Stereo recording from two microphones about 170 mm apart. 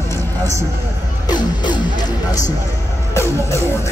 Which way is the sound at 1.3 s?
25° left (ahead or behind).